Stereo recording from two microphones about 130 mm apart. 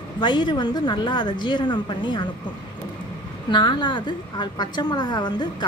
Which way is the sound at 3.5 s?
35° left (ahead or behind).